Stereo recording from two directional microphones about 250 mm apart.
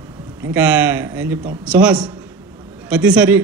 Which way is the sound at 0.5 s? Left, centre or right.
Centre.